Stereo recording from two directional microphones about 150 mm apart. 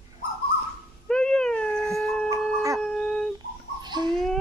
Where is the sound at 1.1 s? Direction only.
5° left (ahead or behind).